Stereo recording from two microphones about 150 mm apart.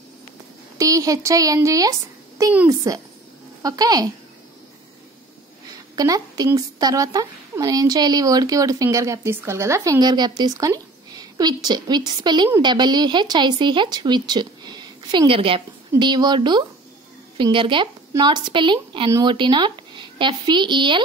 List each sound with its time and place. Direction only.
0.7 s a woman's voice: 20° right (ahead or behind)
5.9 s a woman's voice: 25° right (ahead or behind)